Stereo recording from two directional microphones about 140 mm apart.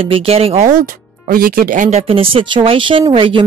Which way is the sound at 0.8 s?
90° right.